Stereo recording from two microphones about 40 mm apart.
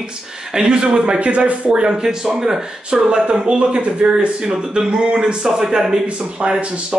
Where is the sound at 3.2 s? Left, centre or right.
Right.